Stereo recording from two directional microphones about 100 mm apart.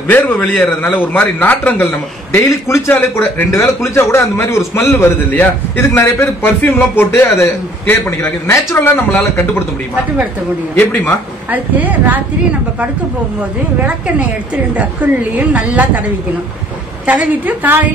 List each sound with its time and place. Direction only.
0.1 s a man's voice: 15° left (ahead or behind)
10.8 s a man's voice: 20° left (ahead or behind)
11.5 s a woman's voice: 15° right (ahead or behind)
13.8 s a woman's voice: 15° right (ahead or behind)
17.0 s a woman's voice: 15° right (ahead or behind)